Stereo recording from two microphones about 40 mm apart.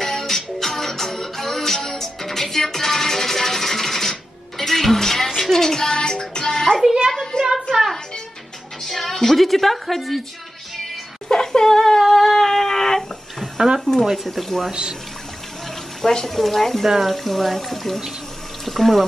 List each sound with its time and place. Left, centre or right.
0.0 s music: centre
7.3 s a sound: left
8.8 s a woman's voice: centre
11.2 s a sound: centre
13.7 s speech: centre
14.0 s speech: centre
14.7 s speech: right
16.0 s speech: centre